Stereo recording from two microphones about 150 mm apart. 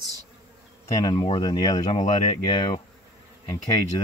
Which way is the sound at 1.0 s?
30° left (ahead or behind).